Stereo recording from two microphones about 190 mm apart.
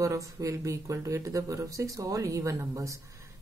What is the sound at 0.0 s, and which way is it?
Speech, 15° right (ahead or behind).